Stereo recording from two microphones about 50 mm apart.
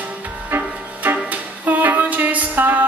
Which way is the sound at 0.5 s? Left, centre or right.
Right.